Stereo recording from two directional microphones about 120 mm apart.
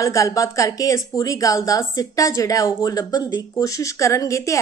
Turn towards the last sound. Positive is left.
turn(degrees=25)  # may be behind; listen again after turning